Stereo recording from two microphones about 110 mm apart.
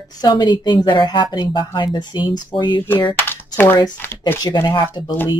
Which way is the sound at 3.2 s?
20° left (ahead or behind).